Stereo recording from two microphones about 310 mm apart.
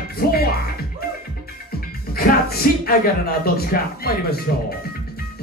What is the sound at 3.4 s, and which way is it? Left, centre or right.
Speech, left.